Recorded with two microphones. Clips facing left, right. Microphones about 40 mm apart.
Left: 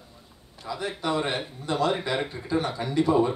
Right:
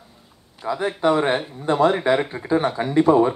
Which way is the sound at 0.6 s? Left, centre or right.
Right.